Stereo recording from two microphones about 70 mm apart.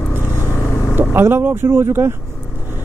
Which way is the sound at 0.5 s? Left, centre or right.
Left.